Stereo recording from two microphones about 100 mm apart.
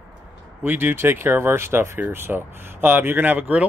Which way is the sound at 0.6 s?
20° right (ahead or behind).